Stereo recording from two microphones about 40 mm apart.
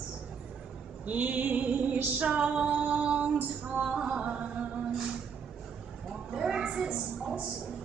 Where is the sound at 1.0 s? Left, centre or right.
Right.